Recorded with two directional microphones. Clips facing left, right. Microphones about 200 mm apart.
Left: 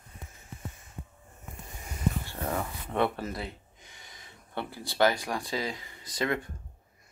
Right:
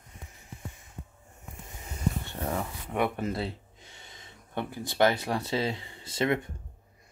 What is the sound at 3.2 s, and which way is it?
Speech, 25° right (ahead or behind).